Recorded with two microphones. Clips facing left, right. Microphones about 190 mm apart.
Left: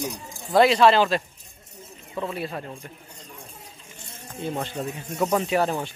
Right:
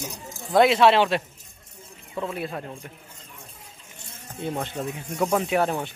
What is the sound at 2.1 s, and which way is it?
Speech, centre (ahead or behind).